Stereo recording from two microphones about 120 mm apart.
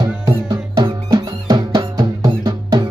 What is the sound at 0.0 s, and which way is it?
Music, 35° right (ahead or behind).